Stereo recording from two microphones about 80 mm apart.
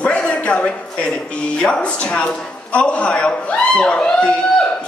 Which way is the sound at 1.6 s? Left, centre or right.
Centre.